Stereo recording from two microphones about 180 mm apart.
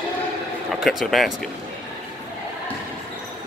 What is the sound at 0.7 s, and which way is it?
Speech, centre (ahead or behind).